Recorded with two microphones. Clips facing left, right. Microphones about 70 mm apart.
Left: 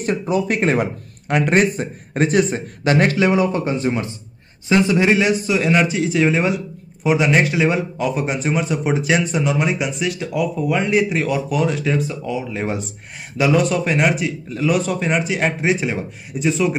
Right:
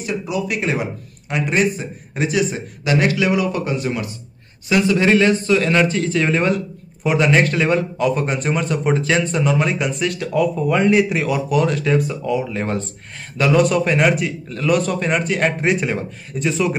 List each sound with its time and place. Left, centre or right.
0.3 s a man's voice: left; by 16.7 s centre